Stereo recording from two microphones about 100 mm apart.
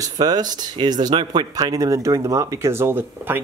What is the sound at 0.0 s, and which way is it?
Speech, 40° right (ahead or behind).